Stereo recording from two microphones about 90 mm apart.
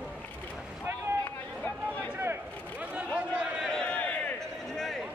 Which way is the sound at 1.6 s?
15° left (ahead or behind).